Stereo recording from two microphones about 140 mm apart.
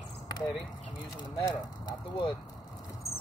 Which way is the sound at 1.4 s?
30° left (ahead or behind).